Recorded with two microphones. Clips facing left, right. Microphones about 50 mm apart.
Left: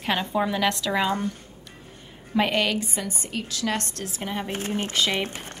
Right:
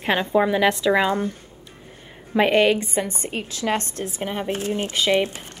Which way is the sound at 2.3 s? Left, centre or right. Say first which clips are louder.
Right 6 dB; right.